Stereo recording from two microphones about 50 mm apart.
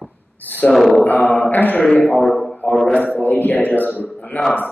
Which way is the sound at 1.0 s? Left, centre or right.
Left.